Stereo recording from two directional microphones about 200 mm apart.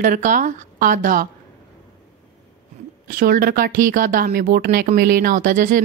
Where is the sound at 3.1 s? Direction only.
45° right (ahead or behind).